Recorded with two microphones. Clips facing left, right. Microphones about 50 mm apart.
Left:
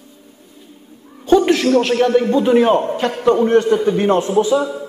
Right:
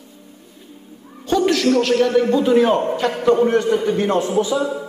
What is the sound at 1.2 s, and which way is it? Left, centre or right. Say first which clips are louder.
A man's voice: left 3 dB; left.